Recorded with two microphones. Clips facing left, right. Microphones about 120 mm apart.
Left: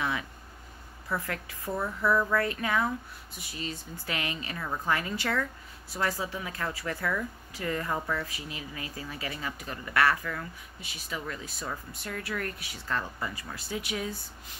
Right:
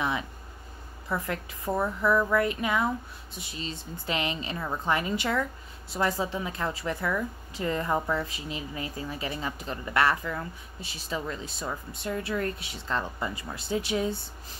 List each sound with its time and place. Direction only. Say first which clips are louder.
1.0 s a woman's voice: right 2 dB; 20° right (ahead or behind)